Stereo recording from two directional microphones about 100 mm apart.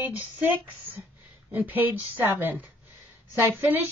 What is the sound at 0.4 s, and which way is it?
A woman's voice, 15° right (ahead or behind).